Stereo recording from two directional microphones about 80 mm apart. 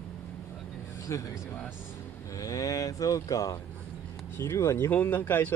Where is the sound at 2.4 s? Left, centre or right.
Left.